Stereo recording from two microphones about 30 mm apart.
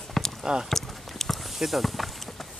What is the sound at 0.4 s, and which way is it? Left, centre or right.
Speech, right.